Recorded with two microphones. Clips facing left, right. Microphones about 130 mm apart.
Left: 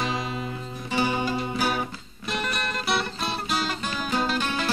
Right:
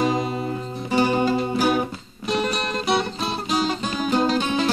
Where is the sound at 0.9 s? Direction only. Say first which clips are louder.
Right 6 dB; 45° right (ahead or behind).